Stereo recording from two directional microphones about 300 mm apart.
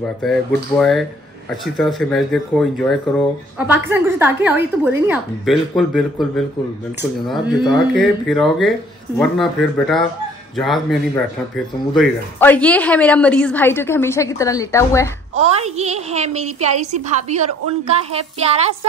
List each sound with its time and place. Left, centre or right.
0.2 s speech: centre
15.3 s a woman's voice: right